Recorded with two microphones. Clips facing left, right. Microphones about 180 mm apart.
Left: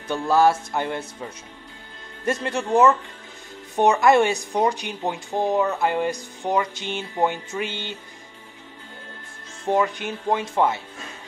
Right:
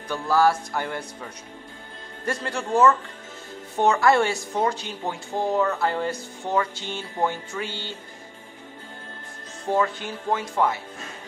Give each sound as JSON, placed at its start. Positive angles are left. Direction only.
{"t": 0.1, "sound": "speech", "side_deg": 25}
{"t": 2.2, "sound": "a woman's voice", "side_deg": 20}
{"t": 9.7, "sound": "speech", "side_deg": 20}